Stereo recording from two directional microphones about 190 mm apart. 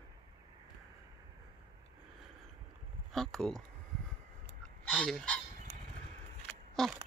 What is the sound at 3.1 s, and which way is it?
Speech, centre (ahead or behind).